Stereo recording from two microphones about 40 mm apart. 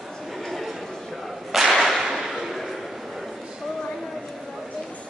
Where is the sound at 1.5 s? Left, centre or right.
Centre.